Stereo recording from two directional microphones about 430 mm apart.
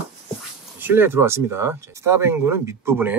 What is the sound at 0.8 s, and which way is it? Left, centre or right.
Speech, centre.